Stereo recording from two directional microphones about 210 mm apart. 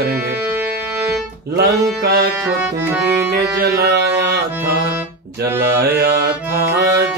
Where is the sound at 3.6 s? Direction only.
50° right (ahead or behind).